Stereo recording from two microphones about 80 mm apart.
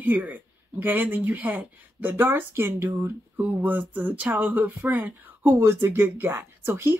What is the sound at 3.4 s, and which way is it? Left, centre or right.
Speech, right.